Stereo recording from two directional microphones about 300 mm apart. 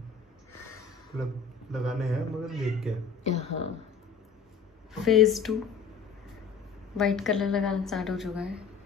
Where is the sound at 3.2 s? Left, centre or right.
Left.